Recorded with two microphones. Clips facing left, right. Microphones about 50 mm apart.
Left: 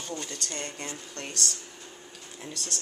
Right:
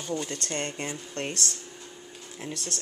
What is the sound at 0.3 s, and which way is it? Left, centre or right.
Speech, right.